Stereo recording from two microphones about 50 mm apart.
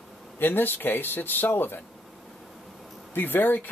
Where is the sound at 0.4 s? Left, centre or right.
Left.